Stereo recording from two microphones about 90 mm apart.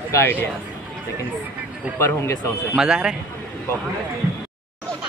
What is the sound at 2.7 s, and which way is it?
Speech, 10° right (ahead or behind).